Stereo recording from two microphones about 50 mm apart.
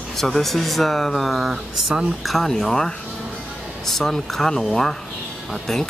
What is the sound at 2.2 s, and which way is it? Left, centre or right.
Speech, centre.